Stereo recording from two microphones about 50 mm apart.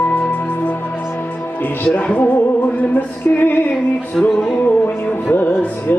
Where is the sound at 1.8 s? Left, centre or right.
Left.